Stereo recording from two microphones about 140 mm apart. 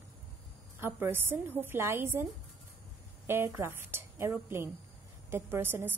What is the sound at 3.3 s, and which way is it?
A woman's voice, 15° right (ahead or behind).